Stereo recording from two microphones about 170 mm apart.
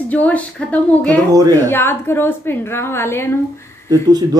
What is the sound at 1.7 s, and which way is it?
A woman's voice, 15° left (ahead or behind).